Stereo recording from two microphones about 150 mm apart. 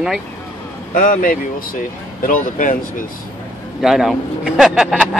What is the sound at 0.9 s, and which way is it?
Speech, 65° left (ahead or behind).